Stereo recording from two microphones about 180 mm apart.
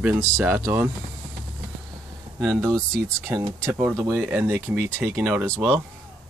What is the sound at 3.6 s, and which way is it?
Speech, 15° right (ahead or behind).